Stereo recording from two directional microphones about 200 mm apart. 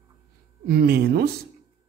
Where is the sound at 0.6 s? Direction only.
50° right (ahead or behind).